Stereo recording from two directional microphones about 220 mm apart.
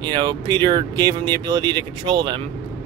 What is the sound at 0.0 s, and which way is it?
Speech, 20° right (ahead or behind).